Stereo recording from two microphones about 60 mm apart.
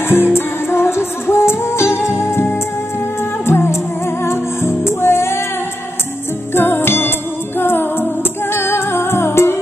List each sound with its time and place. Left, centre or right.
0.1 s music: left
6.5 s music: left